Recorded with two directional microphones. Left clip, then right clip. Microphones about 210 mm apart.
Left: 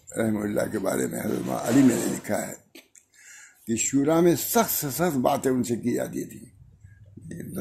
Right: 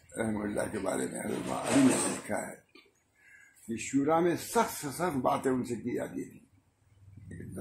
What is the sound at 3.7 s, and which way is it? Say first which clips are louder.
Speech: left 6 dB; 50° left (ahead or behind).